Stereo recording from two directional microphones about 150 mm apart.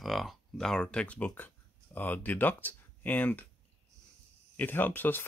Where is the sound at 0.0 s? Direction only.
Centre (ahead or behind).